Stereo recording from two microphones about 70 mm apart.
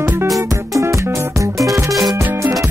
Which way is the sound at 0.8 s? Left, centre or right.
Right.